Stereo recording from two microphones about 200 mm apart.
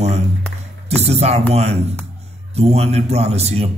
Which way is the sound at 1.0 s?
30° right (ahead or behind).